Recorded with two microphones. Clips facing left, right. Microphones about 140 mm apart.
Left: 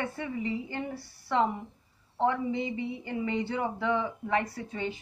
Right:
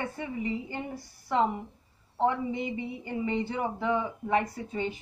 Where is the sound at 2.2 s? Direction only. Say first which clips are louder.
Even; 20° right (ahead or behind).